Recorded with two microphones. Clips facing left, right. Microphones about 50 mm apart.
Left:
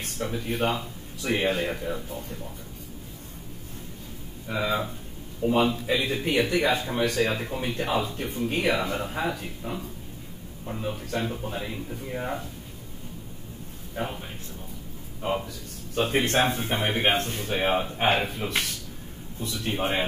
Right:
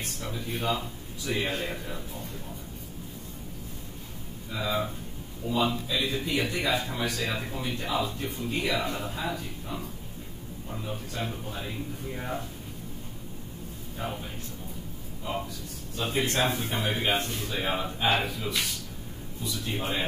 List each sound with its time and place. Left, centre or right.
0.0 s a man's voice: left
4.5 s a man's voice: left
10.8 s a man's voice: left
12.1 s speech: left
14.0 s a man's voice: left
15.4 s a man's voice: left